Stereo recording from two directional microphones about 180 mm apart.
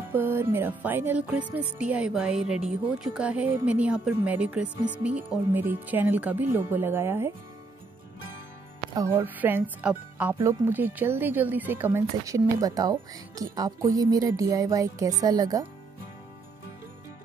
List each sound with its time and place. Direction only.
0.1 s speech: 10° right (ahead or behind)
8.9 s speech: 15° right (ahead or behind)